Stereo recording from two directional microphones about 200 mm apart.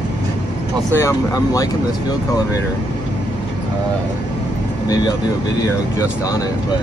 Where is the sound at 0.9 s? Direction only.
15° left (ahead or behind).